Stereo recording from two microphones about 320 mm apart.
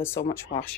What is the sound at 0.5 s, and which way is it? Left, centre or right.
Speech, left.